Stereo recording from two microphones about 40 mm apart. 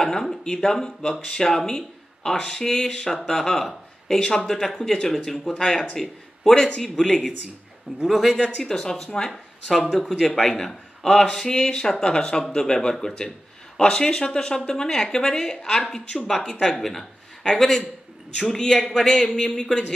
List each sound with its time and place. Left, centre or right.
0.0 s a man's voice: centre
8.1 s speech: centre
8.6 s a man's voice: centre
9.3 s speech: centre
9.8 s a man's voice: centre
17.5 s a man's voice: centre